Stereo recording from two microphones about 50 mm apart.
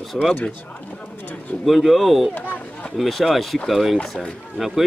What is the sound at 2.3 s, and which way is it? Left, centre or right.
Speech, left.